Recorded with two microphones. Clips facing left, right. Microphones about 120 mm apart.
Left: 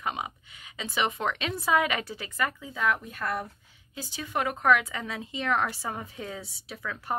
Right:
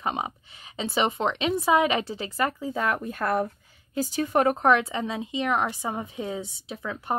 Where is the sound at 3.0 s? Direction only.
55° right (ahead or behind); by 7.1 s 25° right (ahead or behind).